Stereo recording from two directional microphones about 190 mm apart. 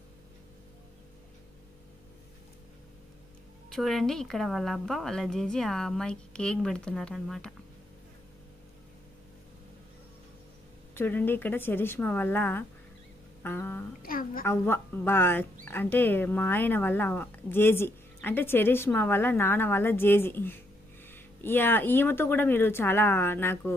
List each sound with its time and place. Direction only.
3.7 s a woman's voice: centre (ahead or behind)
11.0 s speech: 10° left (ahead or behind)
14.0 s a woman's voice: 50° left (ahead or behind)
14.4 s speech: 10° left (ahead or behind)